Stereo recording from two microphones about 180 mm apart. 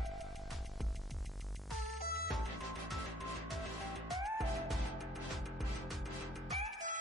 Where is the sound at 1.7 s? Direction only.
Centre (ahead or behind).